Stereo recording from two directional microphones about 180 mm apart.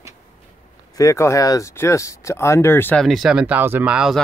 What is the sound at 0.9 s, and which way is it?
Speech, 15° left (ahead or behind).